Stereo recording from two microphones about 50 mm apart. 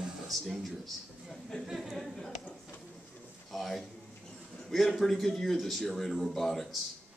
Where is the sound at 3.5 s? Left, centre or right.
Centre.